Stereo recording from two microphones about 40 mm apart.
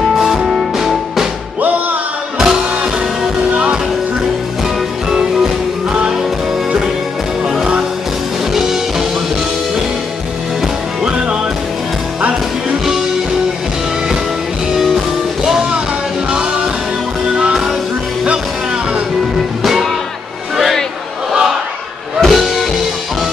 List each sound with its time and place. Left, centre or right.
0.2 s music: centre
2.3 s music: centre
19.6 s music: centre
21.3 s battle cry: centre
22.2 s music: centre